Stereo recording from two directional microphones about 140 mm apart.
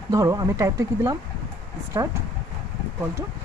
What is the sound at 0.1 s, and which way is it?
Speech, 25° right (ahead or behind).